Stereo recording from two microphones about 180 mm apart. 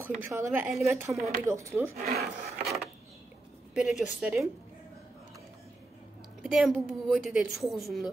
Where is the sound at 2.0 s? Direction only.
55° right (ahead or behind).